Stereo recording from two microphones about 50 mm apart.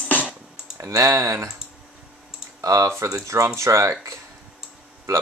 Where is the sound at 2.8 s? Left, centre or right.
Right.